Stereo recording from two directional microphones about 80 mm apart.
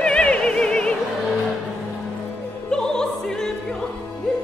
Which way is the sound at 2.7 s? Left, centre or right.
Centre.